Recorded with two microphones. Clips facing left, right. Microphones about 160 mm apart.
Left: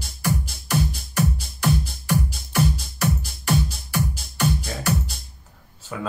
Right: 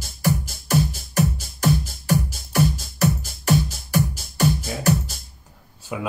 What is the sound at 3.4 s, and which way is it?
Music, 40° right (ahead or behind).